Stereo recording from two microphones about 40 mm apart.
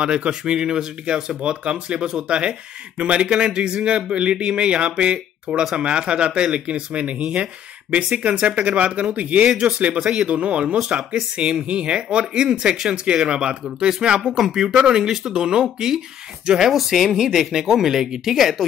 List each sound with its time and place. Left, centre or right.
0.0 s speech: right
5.5 s speech: centre
5.8 s speech: right
10.3 s speech: right
10.8 s speech: centre
11.3 s speech: right; by 18.7 s centre